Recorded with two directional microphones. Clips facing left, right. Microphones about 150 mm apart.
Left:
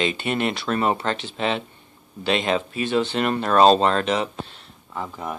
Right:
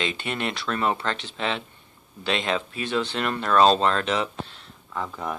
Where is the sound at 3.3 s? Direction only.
20° left (ahead or behind).